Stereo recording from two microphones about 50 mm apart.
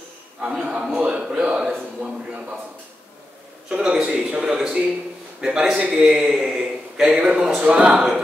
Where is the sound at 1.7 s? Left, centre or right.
Right.